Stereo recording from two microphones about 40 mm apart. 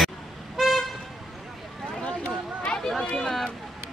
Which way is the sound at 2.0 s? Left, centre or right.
Left.